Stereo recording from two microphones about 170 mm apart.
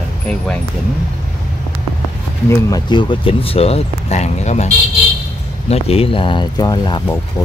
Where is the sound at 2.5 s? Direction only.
20° left (ahead or behind).